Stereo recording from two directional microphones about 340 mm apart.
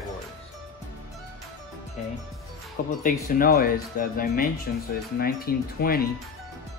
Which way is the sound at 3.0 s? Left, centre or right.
Left.